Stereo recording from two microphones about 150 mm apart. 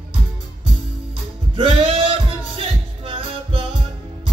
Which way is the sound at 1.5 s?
35° right (ahead or behind).